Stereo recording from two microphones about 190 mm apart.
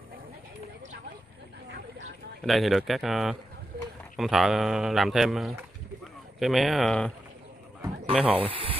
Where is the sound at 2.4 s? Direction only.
Centre (ahead or behind).